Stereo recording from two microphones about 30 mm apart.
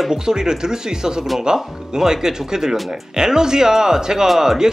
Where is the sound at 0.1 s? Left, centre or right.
Right.